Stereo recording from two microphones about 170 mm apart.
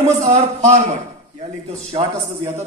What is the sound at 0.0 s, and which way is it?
Speech, 40° right (ahead or behind).